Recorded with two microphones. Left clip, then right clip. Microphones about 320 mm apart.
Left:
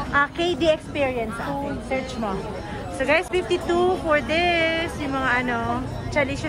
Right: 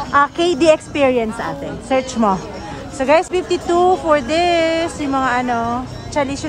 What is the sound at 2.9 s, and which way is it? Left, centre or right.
Speech, centre.